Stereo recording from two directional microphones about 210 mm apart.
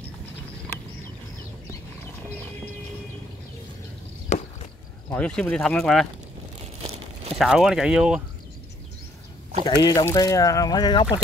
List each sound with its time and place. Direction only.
4.3 s chop: 30° left (ahead or behind)
5.1 s speech: 5° left (ahead or behind)
6.6 s a sound: 30° right (ahead or behind)
7.3 s speech: centre (ahead or behind)
9.7 s speech: 20° left (ahead or behind)